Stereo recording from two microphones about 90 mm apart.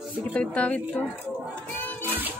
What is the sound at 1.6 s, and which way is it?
Music, 20° left (ahead or behind).